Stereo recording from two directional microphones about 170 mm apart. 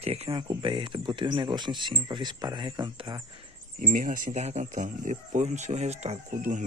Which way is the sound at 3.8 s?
50° right (ahead or behind).